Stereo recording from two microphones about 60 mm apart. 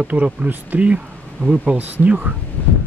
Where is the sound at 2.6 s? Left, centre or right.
Left.